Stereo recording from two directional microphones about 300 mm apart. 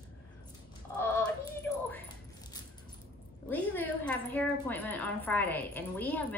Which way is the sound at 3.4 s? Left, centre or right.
Centre.